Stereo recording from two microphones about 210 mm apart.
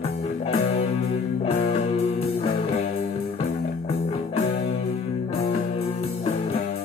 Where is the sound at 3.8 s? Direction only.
30° left (ahead or behind).